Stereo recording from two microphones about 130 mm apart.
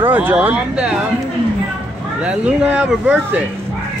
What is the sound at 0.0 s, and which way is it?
Speech, 15° right (ahead or behind).